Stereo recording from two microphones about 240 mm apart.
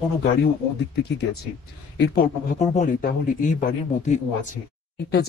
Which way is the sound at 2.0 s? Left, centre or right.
Left.